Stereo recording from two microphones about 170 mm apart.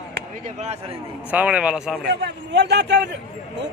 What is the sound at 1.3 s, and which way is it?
Speech, 10° right (ahead or behind).